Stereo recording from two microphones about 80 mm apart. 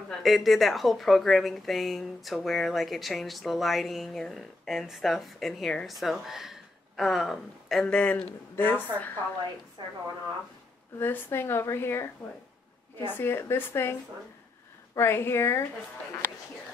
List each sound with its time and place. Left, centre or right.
0.1 s speech: centre
7.8 s speech: centre
11.0 s a woman's voice: left
13.1 s a woman's voice: left
15.0 s a woman's voice: left